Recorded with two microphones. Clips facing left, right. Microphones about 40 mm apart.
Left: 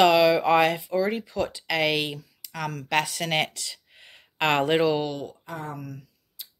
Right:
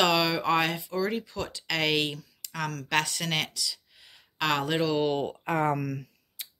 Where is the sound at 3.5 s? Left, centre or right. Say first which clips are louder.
Right 3 dB; left.